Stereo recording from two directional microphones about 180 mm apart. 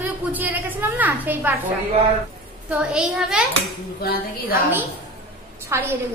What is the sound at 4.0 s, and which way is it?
Speech, 55° left (ahead or behind).